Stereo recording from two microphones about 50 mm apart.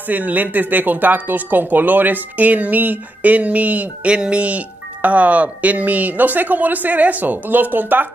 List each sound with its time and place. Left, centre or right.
0.1 s speech: right